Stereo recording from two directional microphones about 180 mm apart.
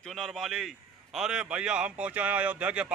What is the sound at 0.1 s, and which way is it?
A man's voice, centre (ahead or behind).